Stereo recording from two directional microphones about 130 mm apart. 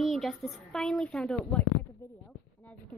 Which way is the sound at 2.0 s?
25° left (ahead or behind).